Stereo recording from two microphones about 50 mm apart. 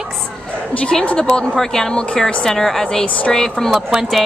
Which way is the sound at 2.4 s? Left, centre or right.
Centre.